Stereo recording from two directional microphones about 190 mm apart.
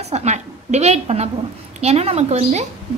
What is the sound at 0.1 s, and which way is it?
A woman's voice, 35° right (ahead or behind).